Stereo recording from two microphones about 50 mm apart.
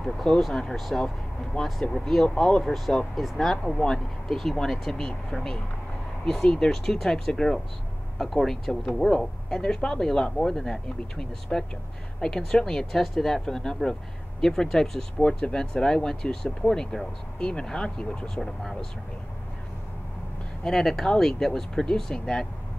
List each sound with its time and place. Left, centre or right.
0.0 s speech: centre
1.0 s speech: centre
1.8 s speech: centre
2.6 s speech: centre
20.6 s speech: centre